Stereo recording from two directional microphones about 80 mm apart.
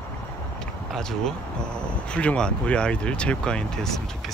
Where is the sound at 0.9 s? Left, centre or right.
Centre.